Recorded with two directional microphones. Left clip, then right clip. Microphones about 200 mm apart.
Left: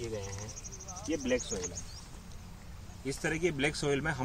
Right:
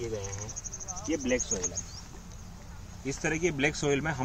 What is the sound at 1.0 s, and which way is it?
Speech, centre (ahead or behind).